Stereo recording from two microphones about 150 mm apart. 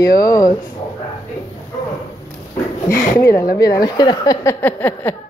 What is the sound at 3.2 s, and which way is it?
Speech, 20° left (ahead or behind).